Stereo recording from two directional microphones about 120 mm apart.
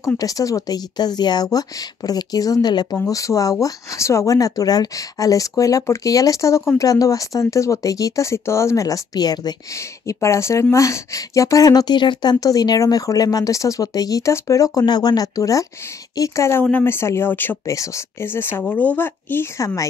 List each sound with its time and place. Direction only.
0.0 s speech: 30° left (ahead or behind)